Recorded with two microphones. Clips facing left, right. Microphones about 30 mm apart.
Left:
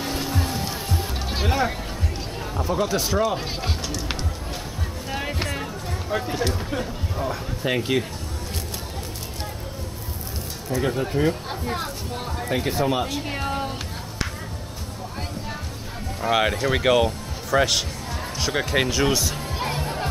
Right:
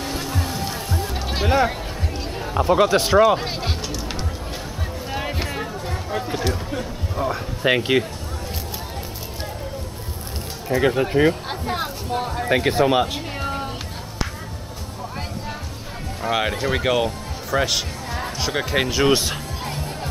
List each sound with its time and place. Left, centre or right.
0.0 s music: centre
1.3 s speech: centre
2.5 s speech: right
3.3 s speech: centre
5.1 s a sound: centre
7.6 s speech: right
10.7 s speech: right
11.6 s speech: centre
12.4 s speech: right
13.3 s music: centre
16.2 s speech: centre
19.1 s speech: right
19.6 s music: centre